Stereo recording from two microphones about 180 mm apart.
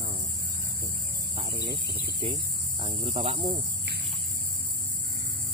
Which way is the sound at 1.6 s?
25° right (ahead or behind).